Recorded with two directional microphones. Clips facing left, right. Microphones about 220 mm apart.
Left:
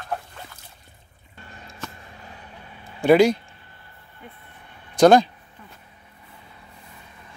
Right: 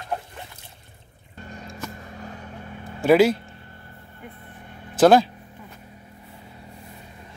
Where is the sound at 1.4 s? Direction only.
40° right (ahead or behind).